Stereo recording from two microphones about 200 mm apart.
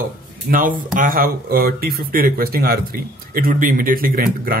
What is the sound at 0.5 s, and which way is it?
Speech, 45° right (ahead or behind).